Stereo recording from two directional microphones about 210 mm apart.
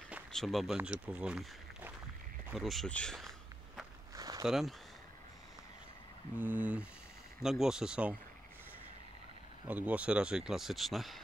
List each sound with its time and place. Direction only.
0.1 s speech: centre (ahead or behind)
4.2 s a sound: 20° right (ahead or behind)
4.5 s speech: centre (ahead or behind)
6.3 s a sound: 10° right (ahead or behind)
7.4 s speech: centre (ahead or behind)
9.7 s speech: 5° right (ahead or behind)